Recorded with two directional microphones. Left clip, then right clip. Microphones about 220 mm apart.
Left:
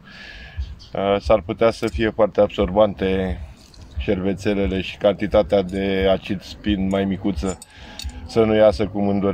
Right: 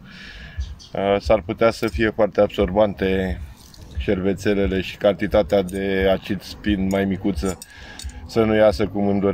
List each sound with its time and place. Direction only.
0.9 s speech: 5° left (ahead or behind)